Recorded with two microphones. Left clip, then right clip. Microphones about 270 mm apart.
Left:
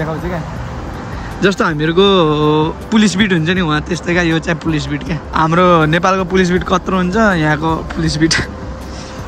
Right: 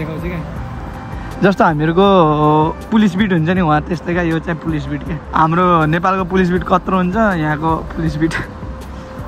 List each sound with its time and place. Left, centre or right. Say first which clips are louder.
1.4 s speech: right 1 dB; centre